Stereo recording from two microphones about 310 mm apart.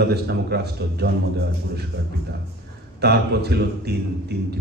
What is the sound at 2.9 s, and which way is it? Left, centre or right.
A man's voice, right.